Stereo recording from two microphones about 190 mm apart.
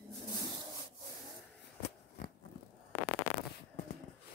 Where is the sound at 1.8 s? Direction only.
45° left (ahead or behind).